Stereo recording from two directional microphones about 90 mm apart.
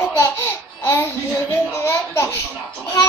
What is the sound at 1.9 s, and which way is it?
Child singing, 30° left (ahead or behind).